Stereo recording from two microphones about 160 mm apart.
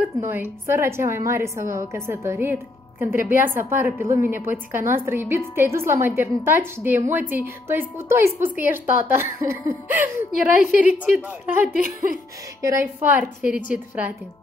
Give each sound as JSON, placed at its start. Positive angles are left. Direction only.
{"t": 0.0, "sound": "a woman's voice", "side_deg": -10}